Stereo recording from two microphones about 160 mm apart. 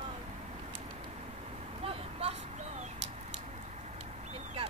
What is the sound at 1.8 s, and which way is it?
Vehicle, 40° right (ahead or behind).